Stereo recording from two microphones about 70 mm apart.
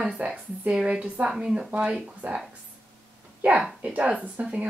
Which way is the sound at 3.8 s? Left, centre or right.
Centre.